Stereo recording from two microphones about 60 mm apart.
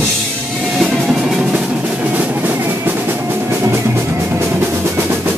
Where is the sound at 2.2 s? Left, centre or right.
Right.